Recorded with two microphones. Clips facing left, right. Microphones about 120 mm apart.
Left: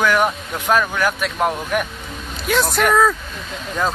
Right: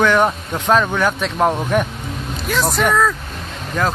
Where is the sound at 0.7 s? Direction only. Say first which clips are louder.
Right 2 dB; centre (ahead or behind).